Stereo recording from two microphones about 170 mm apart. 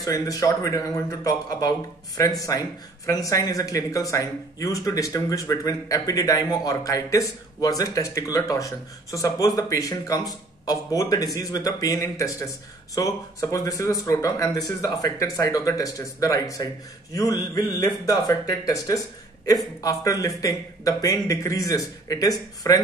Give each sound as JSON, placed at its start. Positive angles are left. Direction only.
{"t": 0.0, "sound": "speech", "side_deg": 20}